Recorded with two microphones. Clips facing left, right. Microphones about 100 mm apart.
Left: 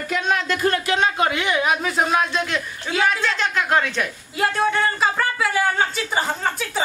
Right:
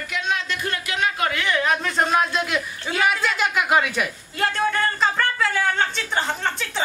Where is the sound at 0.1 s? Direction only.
50° left (ahead or behind); by 4.1 s 10° right (ahead or behind).